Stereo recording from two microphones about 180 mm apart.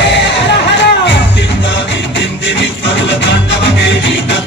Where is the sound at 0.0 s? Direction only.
75° left (ahead or behind).